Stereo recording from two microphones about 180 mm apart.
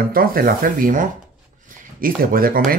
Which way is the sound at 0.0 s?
55° right (ahead or behind).